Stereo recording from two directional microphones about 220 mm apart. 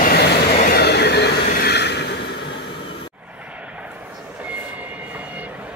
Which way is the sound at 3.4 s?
5° right (ahead or behind).